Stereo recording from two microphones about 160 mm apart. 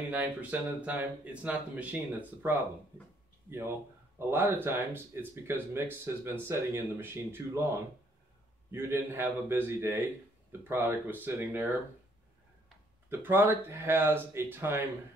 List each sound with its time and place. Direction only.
0.1 s speech: 10° right (ahead or behind)
8.7 s speech: 15° right (ahead or behind)
13.1 s speech: 15° right (ahead or behind)